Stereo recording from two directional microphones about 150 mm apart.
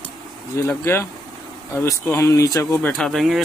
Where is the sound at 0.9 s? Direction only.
15° left (ahead or behind).